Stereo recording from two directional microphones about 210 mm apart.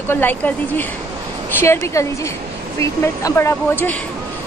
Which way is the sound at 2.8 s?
15° left (ahead or behind).